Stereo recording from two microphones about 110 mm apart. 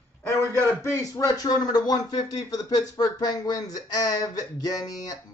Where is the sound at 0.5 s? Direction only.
15° left (ahead or behind).